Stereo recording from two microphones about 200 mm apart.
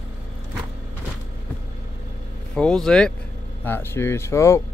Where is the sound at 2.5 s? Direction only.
5° left (ahead or behind).